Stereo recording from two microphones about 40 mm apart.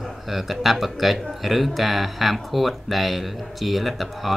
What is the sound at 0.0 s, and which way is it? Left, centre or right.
A man's voice, centre.